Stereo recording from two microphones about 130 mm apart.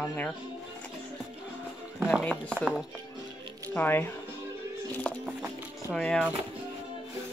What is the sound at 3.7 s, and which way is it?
Speech, 15° left (ahead or behind).